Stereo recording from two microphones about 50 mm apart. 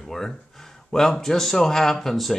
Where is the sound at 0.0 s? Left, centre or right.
Centre.